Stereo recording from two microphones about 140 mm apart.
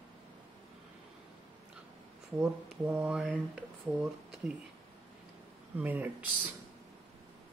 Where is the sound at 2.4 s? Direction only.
15° right (ahead or behind).